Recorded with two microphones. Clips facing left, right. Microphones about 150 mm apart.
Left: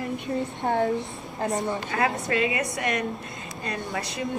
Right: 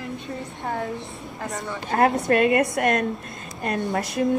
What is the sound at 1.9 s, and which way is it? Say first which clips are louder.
Speech: right 7 dB; 50° right (ahead or behind).